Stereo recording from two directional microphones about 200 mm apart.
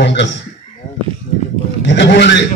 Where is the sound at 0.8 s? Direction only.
35° left (ahead or behind).